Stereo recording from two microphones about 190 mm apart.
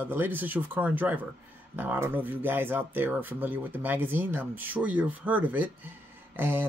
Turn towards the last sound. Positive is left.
turn(degrees=-10)  # may be behind; listen again after turning